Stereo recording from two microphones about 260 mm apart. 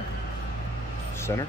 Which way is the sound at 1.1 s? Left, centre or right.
Centre.